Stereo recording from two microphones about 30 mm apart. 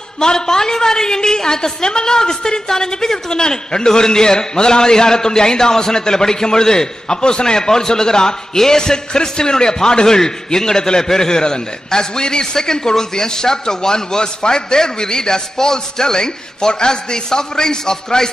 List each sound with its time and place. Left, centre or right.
0.2 s a woman's voice: left